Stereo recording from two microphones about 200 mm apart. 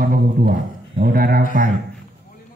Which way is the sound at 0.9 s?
50° right (ahead or behind).